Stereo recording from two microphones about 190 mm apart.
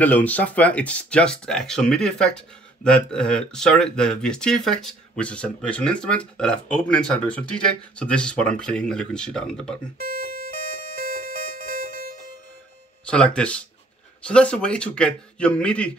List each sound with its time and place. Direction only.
0.0 s speech: 10° left (ahead or behind)
10.0 s music: 50° left (ahead or behind)
13.0 s speech: 5° left (ahead or behind)